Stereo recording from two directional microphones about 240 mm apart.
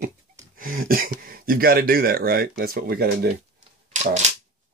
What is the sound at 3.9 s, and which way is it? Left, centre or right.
Typewriter, right.